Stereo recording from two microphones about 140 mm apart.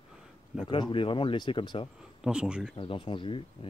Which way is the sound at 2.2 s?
5° right (ahead or behind).